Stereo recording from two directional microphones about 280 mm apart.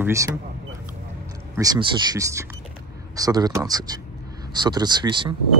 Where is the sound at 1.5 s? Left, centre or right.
Centre.